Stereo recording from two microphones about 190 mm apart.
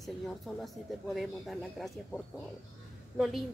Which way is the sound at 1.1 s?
Centre (ahead or behind).